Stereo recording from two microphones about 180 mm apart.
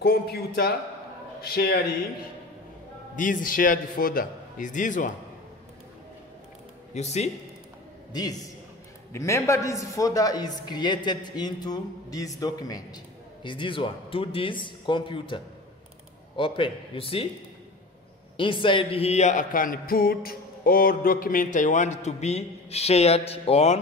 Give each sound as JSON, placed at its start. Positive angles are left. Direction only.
{"t": 0.0, "sound": "a man's voice", "side_deg": 60}
{"t": 3.2, "sound": "a man's voice", "side_deg": 50}
{"t": 6.9, "sound": "speech", "side_deg": 40}
{"t": 8.1, "sound": "a man's voice", "side_deg": 20}
{"t": 18.4, "sound": "speech", "side_deg": 30}